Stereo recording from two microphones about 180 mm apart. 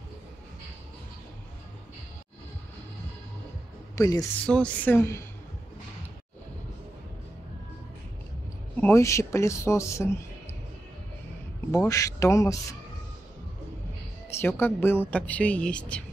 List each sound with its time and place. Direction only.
3.9 s a woman's voice: 20° left (ahead or behind)
4.5 s a woman's voice: 10° left (ahead or behind)
8.7 s a woman's voice: 15° left (ahead or behind)
11.9 s a woman's voice: 20° left (ahead or behind)
14.4 s a woman's voice: 10° left (ahead or behind)